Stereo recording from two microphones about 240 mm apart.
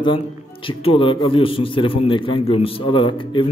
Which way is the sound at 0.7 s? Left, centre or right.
Left.